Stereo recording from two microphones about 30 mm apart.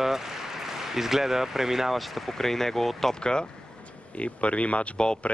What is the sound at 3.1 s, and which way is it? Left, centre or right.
Speech, left.